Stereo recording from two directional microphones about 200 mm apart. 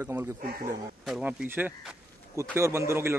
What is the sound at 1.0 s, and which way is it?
Speech, 5° right (ahead or behind).